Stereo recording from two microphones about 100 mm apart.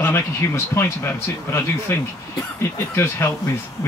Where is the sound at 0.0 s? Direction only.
20° left (ahead or behind).